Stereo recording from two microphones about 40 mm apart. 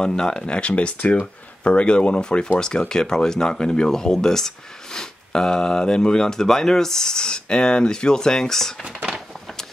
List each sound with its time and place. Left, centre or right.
0.0 s speech: centre
0.4 s speech: left